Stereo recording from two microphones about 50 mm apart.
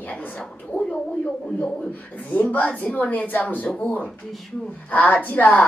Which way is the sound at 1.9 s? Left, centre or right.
Left.